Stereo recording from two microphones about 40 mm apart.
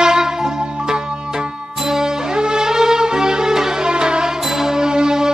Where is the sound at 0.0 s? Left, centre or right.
Centre.